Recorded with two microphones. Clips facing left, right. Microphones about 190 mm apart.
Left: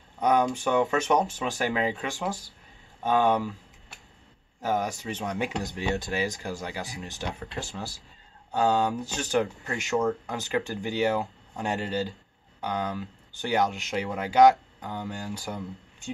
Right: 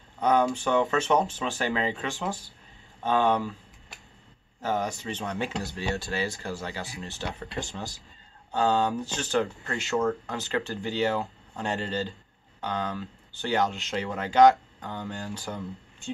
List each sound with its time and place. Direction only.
0.2 s speech: 15° left (ahead or behind)
2.0 s speech: 15° left (ahead or behind)
4.6 s speech: 15° left (ahead or behind)
7.3 s speech: centre (ahead or behind)
8.5 s speech: 15° left (ahead or behind)